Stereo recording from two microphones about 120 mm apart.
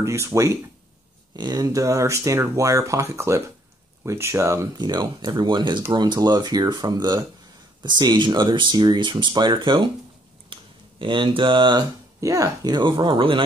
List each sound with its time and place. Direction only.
0.0 s speech: 25° right (ahead or behind)
1.3 s speech: 35° right (ahead or behind)
4.7 s speech: 35° right (ahead or behind)
10.5 s a sound: 40° right (ahead or behind)
12.2 s speech: 25° right (ahead or behind); by 13.4 s 45° right (ahead or behind)